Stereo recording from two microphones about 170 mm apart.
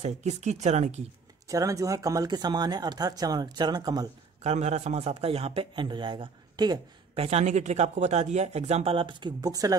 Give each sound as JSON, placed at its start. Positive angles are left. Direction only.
{"t": 0.0, "sound": "speech", "side_deg": -40}
{"t": 1.5, "sound": "speech", "side_deg": -20}
{"t": 4.4, "sound": "speech", "side_deg": -40}
{"t": 7.2, "sound": "speech", "side_deg": -40}